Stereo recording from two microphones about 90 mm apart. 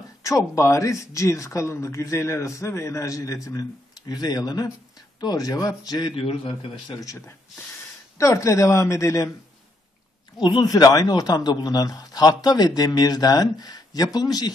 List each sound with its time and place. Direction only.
0.2 s a man's voice: 35° left (ahead or behind)
6.2 s speech: 90° left
6.9 s speech: 40° left (ahead or behind)
10.6 s a man's voice: 45° left (ahead or behind)